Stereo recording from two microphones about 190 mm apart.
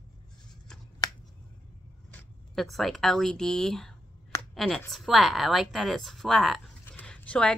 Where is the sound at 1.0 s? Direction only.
20° left (ahead or behind).